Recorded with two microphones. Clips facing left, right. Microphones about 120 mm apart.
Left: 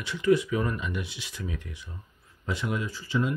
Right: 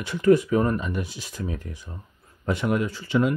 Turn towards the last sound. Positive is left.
turn(degrees=-65)  # may be behind; listen again after turning